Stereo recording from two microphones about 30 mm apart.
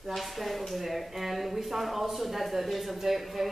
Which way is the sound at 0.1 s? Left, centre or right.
Centre.